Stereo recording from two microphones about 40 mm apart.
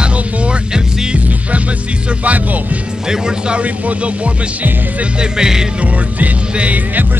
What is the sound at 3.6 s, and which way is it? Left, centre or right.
Music, right.